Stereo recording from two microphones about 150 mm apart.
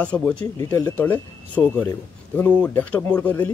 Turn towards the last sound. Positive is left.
turn(degrees=10)  # may be behind; listen again after turning